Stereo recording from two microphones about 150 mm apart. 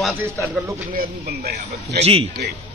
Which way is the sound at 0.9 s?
85° right.